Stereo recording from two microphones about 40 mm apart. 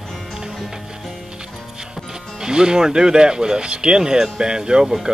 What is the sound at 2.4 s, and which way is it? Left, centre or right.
Speech, centre.